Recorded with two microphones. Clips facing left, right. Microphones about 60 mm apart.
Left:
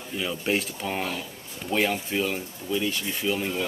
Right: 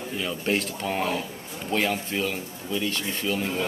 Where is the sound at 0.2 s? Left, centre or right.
Centre.